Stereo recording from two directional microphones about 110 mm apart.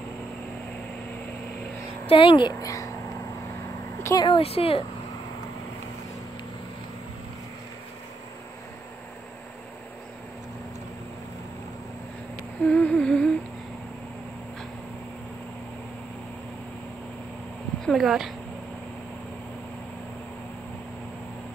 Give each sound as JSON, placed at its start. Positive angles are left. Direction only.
{"t": 2.0, "sound": "a woman's voice", "side_deg": 55}
{"t": 2.6, "sound": "speech", "side_deg": 30}
{"t": 4.0, "sound": "a sound", "side_deg": 30}
{"t": 4.3, "sound": "speech", "side_deg": 65}
{"t": 12.6, "sound": "humming", "side_deg": 10}
{"t": 17.8, "sound": "speech", "side_deg": 0}